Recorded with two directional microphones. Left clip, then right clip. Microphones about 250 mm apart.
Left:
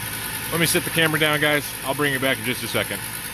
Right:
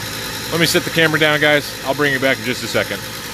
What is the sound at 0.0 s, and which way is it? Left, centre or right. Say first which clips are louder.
Vehicle: right 5 dB; centre.